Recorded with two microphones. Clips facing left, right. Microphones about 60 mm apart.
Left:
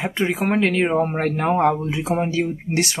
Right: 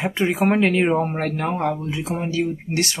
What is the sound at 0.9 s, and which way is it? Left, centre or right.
Speech, centre.